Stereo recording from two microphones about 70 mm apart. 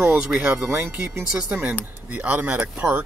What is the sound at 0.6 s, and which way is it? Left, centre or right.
Speech, right.